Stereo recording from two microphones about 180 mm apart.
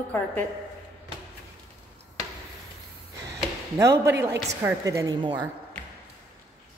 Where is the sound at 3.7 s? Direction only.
15° right (ahead or behind).